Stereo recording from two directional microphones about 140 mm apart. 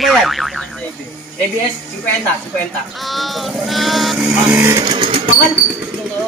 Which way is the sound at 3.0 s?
Centre (ahead or behind).